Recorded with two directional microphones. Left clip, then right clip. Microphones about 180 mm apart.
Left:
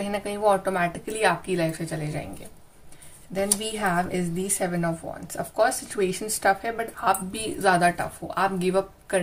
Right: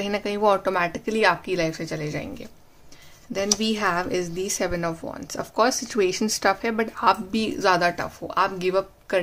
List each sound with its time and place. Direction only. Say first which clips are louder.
0.0 s a woman's voice: right 2 dB; 40° right (ahead or behind)
3.3 s a woman's voice: right 3 dB; 45° right (ahead or behind)